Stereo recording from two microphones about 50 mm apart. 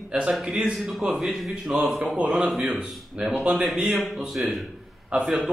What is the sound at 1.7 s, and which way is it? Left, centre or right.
A man's voice, centre.